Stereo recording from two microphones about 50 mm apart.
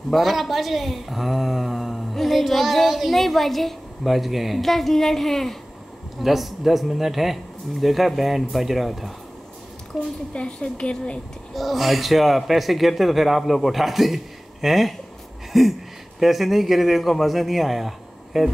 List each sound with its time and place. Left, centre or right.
0.1 s speech: centre
10.3 s a woman's voice: centre
11.5 s speech: centre